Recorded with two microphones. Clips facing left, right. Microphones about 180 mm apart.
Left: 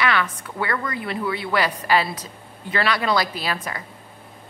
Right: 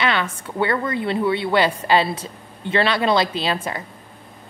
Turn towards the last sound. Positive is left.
turn(degrees=-25)  # may be behind; listen again after turning